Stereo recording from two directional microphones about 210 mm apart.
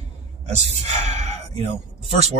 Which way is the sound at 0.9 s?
30° right (ahead or behind).